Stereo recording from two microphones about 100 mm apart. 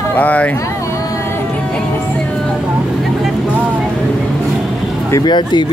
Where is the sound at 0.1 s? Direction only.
15° left (ahead or behind).